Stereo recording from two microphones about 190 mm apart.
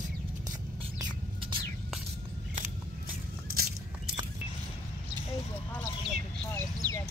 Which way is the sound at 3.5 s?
55° right (ahead or behind).